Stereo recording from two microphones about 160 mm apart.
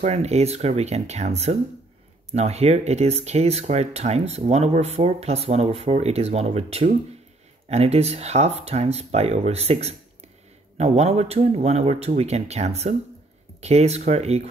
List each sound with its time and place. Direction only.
0.0 s speech: 45° right (ahead or behind)